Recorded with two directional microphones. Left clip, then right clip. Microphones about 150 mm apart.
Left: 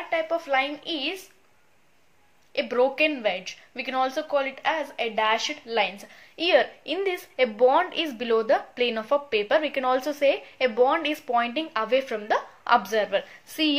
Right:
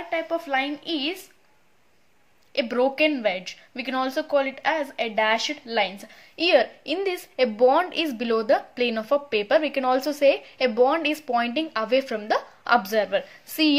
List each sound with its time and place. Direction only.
0.1 s a woman's voice: 30° right (ahead or behind)
2.5 s a woman's voice: 45° right (ahead or behind)